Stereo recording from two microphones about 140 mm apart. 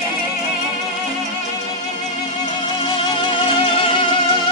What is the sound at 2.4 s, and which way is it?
Music, 35° left (ahead or behind).